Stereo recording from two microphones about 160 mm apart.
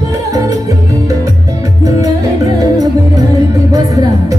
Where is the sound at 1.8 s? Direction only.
20° right (ahead or behind).